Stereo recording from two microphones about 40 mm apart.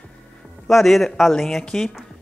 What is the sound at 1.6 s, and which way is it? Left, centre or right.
Speech, centre.